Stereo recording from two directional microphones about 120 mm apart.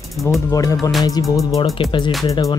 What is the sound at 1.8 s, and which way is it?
Speech, 45° left (ahead or behind).